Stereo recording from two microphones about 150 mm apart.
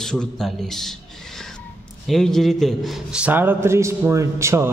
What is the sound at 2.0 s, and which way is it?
A man's voice, centre (ahead or behind).